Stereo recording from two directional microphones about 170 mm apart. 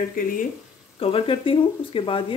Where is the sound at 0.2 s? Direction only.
55° left (ahead or behind).